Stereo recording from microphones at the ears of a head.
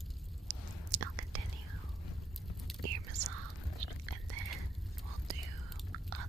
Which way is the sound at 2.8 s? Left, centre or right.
Right.